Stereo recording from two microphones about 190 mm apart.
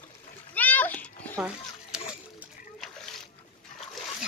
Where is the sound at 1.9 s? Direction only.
5° right (ahead or behind).